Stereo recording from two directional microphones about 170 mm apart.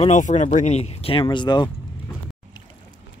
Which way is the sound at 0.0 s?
45° left (ahead or behind).